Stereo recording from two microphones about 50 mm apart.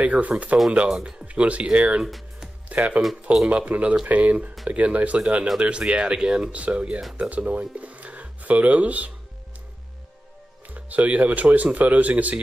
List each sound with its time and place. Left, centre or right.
0.0 s speech: right
0.7 s speech: centre
10.7 s speech: right